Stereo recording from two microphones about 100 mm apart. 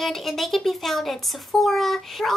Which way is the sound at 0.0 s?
Centre (ahead or behind).